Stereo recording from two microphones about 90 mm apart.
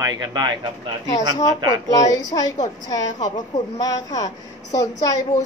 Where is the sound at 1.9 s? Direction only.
45° left (ahead or behind).